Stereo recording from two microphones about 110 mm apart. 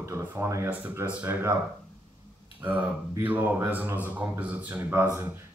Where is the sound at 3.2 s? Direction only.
15° right (ahead or behind).